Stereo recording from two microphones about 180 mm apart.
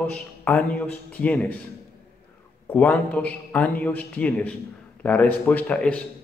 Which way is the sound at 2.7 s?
10° left (ahead or behind).